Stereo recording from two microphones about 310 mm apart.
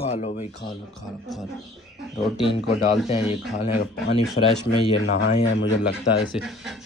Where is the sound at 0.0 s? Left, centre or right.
Left.